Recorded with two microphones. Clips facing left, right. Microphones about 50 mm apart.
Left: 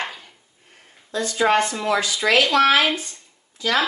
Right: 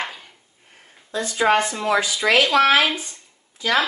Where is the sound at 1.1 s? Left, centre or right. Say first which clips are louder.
Even; centre.